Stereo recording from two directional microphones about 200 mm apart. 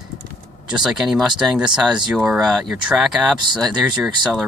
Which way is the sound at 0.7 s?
5° right (ahead or behind).